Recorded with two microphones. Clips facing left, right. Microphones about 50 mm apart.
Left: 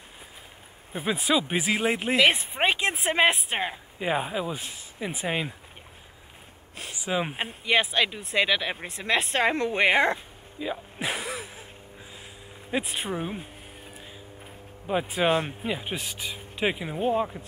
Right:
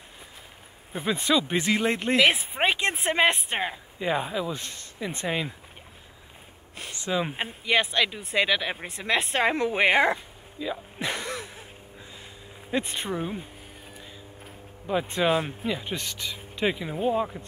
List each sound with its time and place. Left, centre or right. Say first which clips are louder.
0.9 s speech: right 1 dB; centre
4.0 s speech: even; centre
4.6 s speech: even; centre
7.1 s speech: even; centre
7.3 s speech: left 1 dB; centre
10.6 s a sound: even; centre
12.7 s speech: right 1 dB; centre
13.9 s a sound: even; centre
15.2 s speech: left 1 dB; centre
15.6 s speech: right 1 dB; centre